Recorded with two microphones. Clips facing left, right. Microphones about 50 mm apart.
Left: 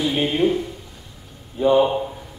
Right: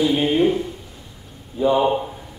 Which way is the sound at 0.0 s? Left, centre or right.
Centre.